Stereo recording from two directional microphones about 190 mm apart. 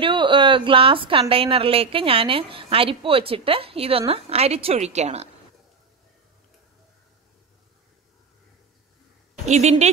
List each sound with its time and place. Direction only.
0.0 s a woman's voice: 25° right (ahead or behind)
9.5 s speech: 35° right (ahead or behind)